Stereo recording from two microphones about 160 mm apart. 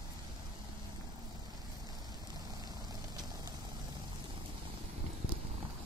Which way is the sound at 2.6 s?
25° right (ahead or behind).